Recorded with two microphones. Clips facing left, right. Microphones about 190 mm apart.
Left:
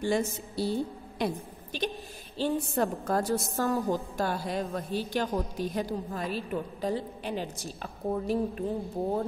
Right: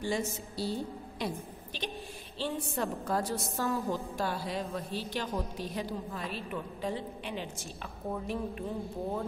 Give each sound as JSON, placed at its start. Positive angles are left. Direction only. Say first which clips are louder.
{"t": 0.0, "sound": "a woman's voice", "louder": "left 5 dB", "side_deg": 60}